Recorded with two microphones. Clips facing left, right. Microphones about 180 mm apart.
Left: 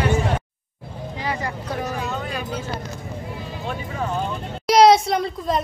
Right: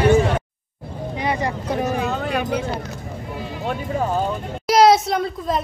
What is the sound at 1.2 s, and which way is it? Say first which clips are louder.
Vehicle: right 4 dB; 20° right (ahead or behind).